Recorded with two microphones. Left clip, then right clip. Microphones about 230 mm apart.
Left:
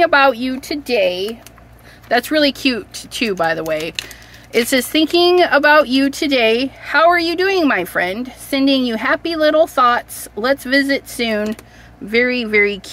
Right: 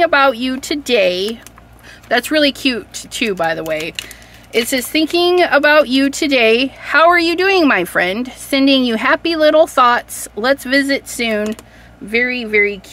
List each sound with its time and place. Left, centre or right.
0.0 s speech: centre; by 1.3 s right
2.0 s speech: centre
12.1 s speech: centre